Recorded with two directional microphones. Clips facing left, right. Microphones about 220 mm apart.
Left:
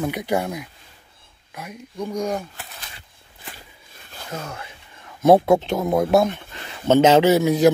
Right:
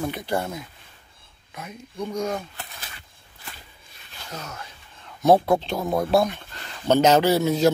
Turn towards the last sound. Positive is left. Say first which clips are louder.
# left 4 dB
turn(degrees=15)  # may be behind; listen again after turning